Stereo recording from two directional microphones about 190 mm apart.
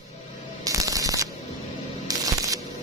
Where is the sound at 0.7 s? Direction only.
15° right (ahead or behind).